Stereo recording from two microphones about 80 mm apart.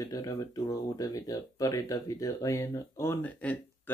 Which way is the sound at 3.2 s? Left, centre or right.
Left.